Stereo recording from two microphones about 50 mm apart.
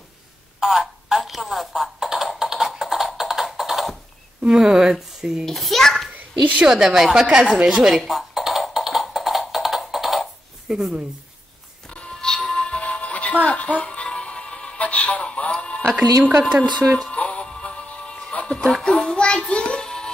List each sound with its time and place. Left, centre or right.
0.6 s telephone: centre
2.3 s music: centre
4.5 s a woman's voice: centre
5.4 s a child's voice: centre
6.1 s bow-wow: right
6.6 s a woman's voice: centre
7.2 s a woman's voice: right
7.6 s a woman's voice: centre
8.0 s music: centre
10.7 s a woman's voice: centre
11.9 s music: left
16.0 s a woman's voice: right
17.1 s music: left